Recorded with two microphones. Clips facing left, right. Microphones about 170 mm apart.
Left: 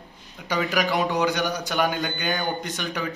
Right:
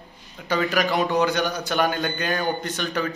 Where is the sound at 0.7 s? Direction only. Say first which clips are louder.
Right 1 dB; 15° left (ahead or behind).